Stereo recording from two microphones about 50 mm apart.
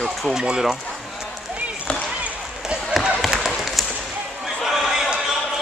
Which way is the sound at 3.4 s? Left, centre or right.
Centre.